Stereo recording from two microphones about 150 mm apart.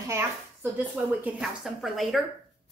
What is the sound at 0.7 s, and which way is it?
Speech, 10° right (ahead or behind).